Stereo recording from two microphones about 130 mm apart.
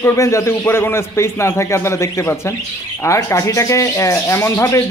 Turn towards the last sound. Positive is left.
turn(degrees=20)  # may be behind; listen again after turning